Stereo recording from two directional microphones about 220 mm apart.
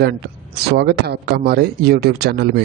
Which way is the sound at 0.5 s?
45° right (ahead or behind).